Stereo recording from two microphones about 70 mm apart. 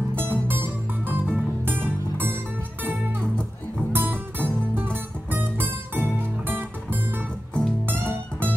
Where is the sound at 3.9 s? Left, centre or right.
Right.